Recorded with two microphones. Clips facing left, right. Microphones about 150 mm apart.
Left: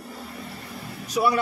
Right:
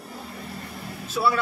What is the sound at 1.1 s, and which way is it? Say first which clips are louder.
Speech: left 1 dB; 15° left (ahead or behind).